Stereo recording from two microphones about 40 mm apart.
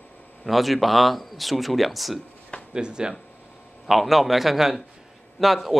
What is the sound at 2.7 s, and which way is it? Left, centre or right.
Speech, centre.